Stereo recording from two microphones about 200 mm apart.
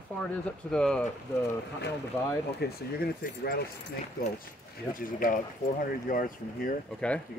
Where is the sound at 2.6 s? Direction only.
50° left (ahead or behind).